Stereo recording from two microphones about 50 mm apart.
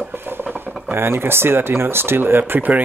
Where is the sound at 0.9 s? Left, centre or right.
Right.